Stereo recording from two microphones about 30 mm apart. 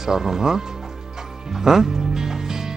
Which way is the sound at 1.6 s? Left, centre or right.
Centre.